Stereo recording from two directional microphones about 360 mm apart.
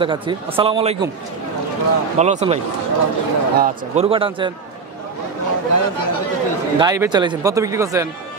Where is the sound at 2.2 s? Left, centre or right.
Centre.